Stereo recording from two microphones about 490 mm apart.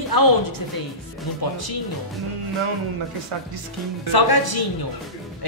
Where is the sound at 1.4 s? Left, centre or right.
Left.